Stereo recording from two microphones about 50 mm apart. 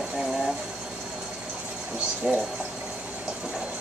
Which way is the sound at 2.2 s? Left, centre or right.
Centre.